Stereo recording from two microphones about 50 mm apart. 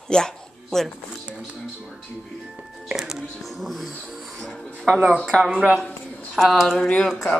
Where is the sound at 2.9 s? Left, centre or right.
Centre.